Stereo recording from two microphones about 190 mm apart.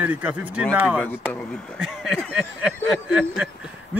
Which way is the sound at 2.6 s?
5° right (ahead or behind).